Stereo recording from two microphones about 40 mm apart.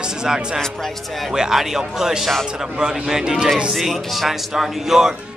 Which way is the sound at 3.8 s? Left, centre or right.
Centre.